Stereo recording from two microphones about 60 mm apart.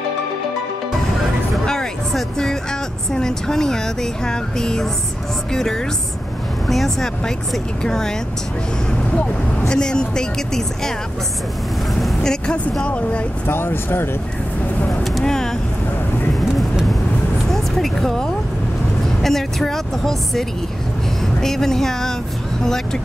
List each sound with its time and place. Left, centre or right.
1.5 s speech: centre
9.1 s speech: left
12.0 s vehicle: centre
13.5 s speech: left
14.9 s vehicle: centre
17.5 s vehicle: centre
19.2 s speech: centre